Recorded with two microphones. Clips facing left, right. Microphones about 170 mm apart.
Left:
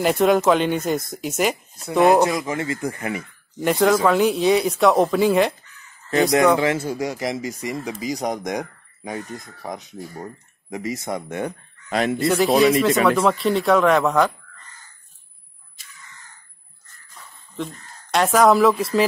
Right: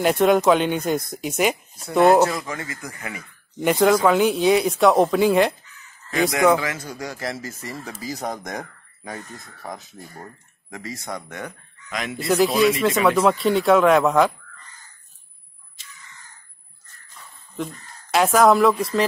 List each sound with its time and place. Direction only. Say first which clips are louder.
0.0 s speech: even; centre (ahead or behind)
2.2 s speech: left 3 dB; 20° left (ahead or behind)
3.5 s speech: even; centre (ahead or behind)
6.6 s speech: left 8 dB; 25° left (ahead or behind)
12.2 s speech: even; centre (ahead or behind)
18.1 s speech: even; centre (ahead or behind)